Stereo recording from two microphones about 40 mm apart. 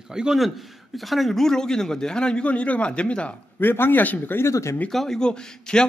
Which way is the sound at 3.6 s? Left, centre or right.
Left.